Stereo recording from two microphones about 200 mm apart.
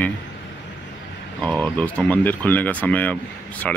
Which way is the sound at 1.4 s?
5° left (ahead or behind).